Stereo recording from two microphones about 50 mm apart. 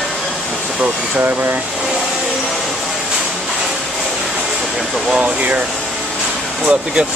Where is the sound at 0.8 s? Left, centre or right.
Right.